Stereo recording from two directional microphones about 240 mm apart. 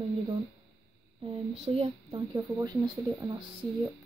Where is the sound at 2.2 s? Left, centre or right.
Centre.